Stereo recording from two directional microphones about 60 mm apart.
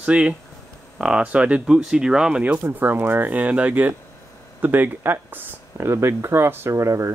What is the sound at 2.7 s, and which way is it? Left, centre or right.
Speech, right.